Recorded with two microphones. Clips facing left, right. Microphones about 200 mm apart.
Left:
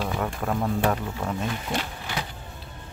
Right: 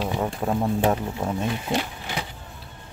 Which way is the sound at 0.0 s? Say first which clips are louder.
Right 2 dB; 20° right (ahead or behind).